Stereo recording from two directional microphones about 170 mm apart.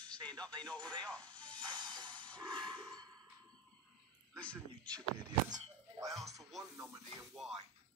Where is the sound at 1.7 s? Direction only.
25° right (ahead or behind).